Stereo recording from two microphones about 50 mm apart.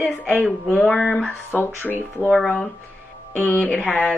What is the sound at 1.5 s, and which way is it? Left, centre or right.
Speech, left.